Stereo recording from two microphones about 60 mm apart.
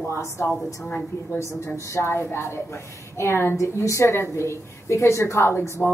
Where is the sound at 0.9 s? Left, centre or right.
Left.